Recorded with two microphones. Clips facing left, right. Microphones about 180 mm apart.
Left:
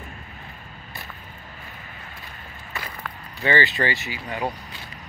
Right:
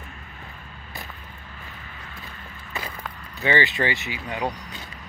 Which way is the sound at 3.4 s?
20° right (ahead or behind).